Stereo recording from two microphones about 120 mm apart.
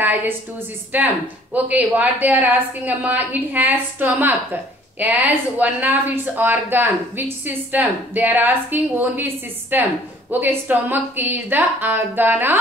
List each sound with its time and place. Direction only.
0.0 s speech: 15° right (ahead or behind)